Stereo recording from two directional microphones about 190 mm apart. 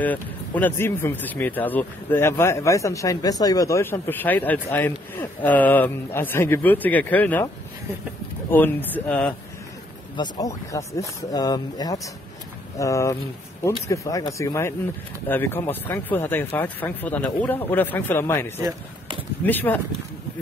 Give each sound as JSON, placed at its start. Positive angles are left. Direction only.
{"t": 0.0, "sound": "speech", "side_deg": 10}
{"t": 8.5, "sound": "speech", "side_deg": 10}
{"t": 10.1, "sound": "speech", "side_deg": 20}